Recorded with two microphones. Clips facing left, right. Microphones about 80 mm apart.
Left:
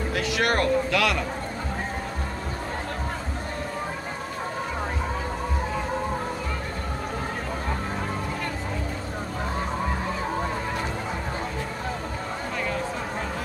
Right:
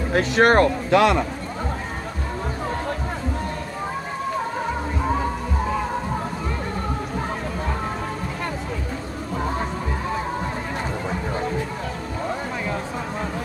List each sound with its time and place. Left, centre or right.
0.1 s speech: right